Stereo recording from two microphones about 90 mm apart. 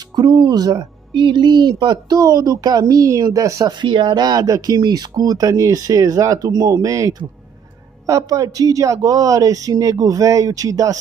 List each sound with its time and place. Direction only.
0.1 s speech: 60° right (ahead or behind)
0.6 s speech: 50° right (ahead or behind)
3.6 s speech: 65° right (ahead or behind); by 11.0 s 40° right (ahead or behind)